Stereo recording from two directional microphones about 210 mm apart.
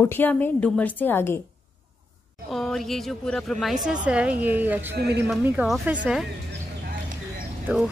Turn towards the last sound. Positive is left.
turn(degrees=-5)  # may be behind; listen again after turning